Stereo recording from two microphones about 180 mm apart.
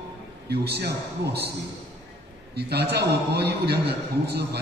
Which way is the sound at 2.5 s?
65° right (ahead or behind).